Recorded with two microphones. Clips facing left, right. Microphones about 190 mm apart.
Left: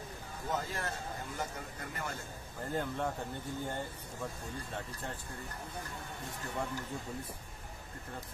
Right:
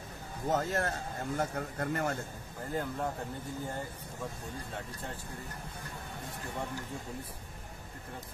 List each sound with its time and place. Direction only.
0.5 s a man's voice: 55° right (ahead or behind)
2.7 s speech: centre (ahead or behind)